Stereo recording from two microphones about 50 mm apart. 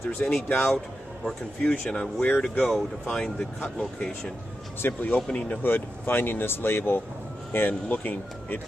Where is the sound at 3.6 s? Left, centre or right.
Left.